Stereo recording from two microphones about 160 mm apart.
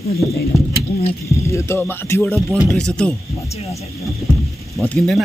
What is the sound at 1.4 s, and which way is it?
Speech, 15° left (ahead or behind).